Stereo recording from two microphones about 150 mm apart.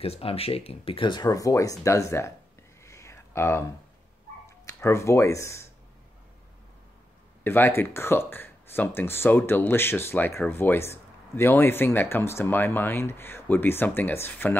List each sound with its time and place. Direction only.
0.0 s speech: 40° left (ahead or behind); by 2.3 s 20° left (ahead or behind)
2.8 s a sound: 20° left (ahead or behind)
4.7 s speech: 20° left (ahead or behind)
7.4 s speech: 15° left (ahead or behind)